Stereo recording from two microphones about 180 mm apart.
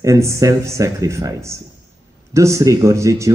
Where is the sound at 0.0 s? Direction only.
15° right (ahead or behind).